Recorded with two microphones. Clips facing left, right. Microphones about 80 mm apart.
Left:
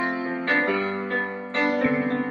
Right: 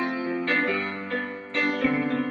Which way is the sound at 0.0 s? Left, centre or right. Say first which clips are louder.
Left 1 dB; left.